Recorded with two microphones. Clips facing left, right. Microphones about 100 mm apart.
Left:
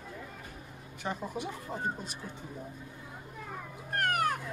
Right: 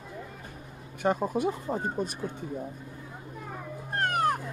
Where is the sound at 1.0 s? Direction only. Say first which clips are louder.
Right 10 dB; 50° right (ahead or behind).